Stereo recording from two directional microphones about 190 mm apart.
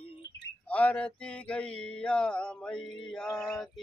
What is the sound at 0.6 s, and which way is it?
Mantra, 5° left (ahead or behind).